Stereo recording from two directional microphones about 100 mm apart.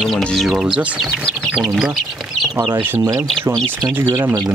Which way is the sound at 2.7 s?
20° right (ahead or behind).